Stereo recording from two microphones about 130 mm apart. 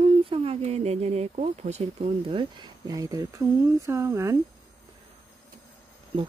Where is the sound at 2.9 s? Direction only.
25° right (ahead or behind).